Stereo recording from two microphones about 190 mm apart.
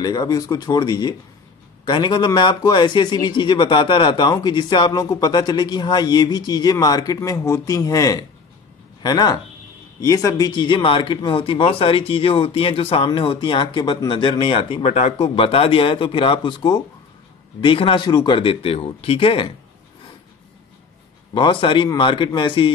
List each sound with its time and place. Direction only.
0.0 s speech: 20° left (ahead or behind)
21.3 s speech: 25° left (ahead or behind)